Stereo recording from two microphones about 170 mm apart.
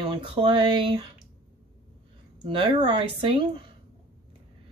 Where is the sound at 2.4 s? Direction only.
30° right (ahead or behind).